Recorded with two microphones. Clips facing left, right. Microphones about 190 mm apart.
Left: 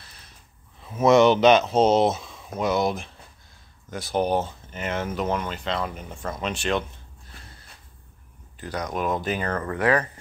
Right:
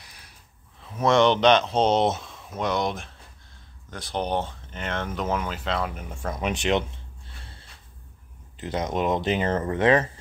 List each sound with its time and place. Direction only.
0.0 s a sound: 15° right (ahead or behind)
0.7 s speech: 5° left (ahead or behind); by 6.8 s 20° right (ahead or behind)
8.5 s speech: 25° right (ahead or behind)